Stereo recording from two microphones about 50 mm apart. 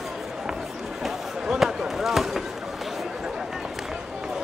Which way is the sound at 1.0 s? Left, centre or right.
Centre.